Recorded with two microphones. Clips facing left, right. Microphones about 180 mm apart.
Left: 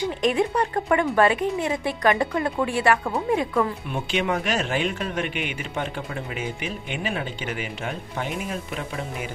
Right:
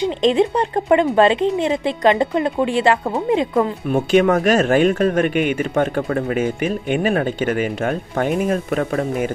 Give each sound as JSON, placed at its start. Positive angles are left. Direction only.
{"t": 0.0, "sound": "speech", "side_deg": -25}
{"t": 3.8, "sound": "a man's voice", "side_deg": -45}